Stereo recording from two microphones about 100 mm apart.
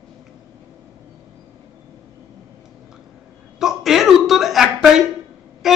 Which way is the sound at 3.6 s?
5° right (ahead or behind).